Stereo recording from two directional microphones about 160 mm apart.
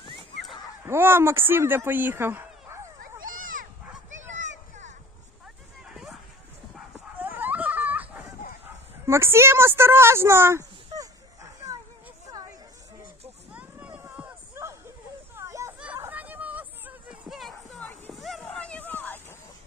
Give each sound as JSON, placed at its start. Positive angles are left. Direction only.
{"t": 0.8, "sound": "speech", "side_deg": -15}
{"t": 3.2, "sound": "a sound", "side_deg": -60}
{"t": 7.2, "sound": "dog", "side_deg": -10}
{"t": 9.0, "sound": "speech", "side_deg": -15}
{"t": 12.3, "sound": "chatter", "side_deg": -25}
{"t": 13.5, "sound": "a sound", "side_deg": -10}